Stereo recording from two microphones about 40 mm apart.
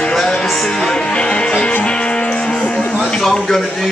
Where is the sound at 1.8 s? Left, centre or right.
Left.